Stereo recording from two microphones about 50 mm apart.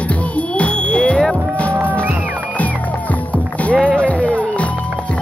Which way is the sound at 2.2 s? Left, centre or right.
Left.